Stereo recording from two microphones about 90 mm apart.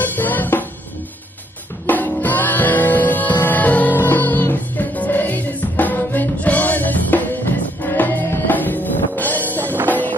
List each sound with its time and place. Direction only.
0.0 s music: 20° left (ahead or behind)
1.9 s music: 20° left (ahead or behind)